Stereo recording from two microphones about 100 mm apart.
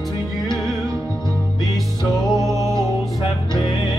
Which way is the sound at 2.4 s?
30° right (ahead or behind).